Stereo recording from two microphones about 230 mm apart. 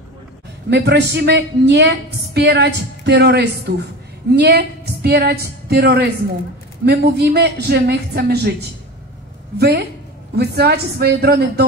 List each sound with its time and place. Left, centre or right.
0.7 s a woman's voice: right
9.6 s a woman's voice: right